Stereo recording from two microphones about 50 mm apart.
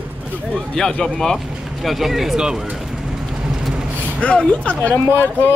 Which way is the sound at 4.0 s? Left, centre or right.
Left.